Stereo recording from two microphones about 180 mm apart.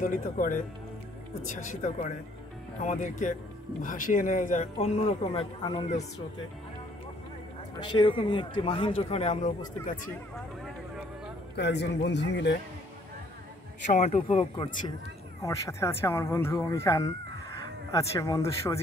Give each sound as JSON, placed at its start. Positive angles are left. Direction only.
{"t": 0.0, "sound": "speech", "side_deg": 50}
{"t": 7.8, "sound": "a man's voice", "side_deg": 25}
{"t": 11.5, "sound": "a man's voice", "side_deg": 70}
{"t": 13.8, "sound": "speech", "side_deg": 40}
{"t": 15.4, "sound": "speech", "side_deg": 15}